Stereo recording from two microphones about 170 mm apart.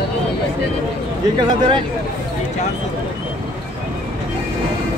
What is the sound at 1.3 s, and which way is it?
Speech, 30° right (ahead or behind).